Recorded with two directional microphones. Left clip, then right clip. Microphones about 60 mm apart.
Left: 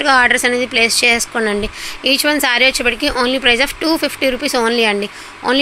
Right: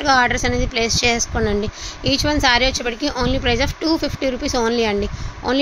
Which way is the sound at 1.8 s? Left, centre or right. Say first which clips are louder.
Left 5 dB; left.